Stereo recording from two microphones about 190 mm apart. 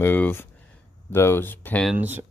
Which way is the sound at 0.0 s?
10° left (ahead or behind).